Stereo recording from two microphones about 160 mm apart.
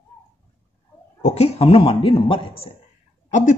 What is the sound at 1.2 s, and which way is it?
Speech, 40° left (ahead or behind).